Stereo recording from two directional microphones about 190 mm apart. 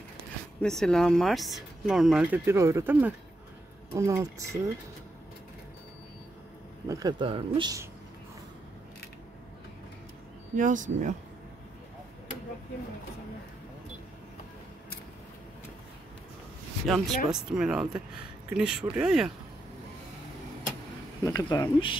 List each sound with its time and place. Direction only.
0.6 s speech: 5° left (ahead or behind); by 4.7 s 15° right (ahead or behind)
6.9 s speech: 20° right (ahead or behind)
10.5 s speech: 45° right (ahead or behind)
16.8 s speech: centre (ahead or behind)
21.2 s speech: 20° left (ahead or behind)